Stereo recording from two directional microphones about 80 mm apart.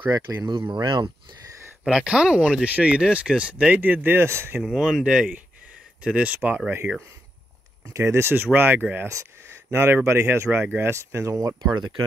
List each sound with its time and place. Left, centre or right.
0.1 s speech: right
0.5 s speech: right
1.9 s speech: centre; by 4.6 s right
4.6 s speech: centre; by 6.6 s right
7.9 s speech: right
9.1 s speech: right